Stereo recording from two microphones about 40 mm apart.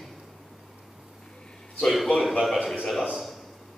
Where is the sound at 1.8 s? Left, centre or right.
Centre.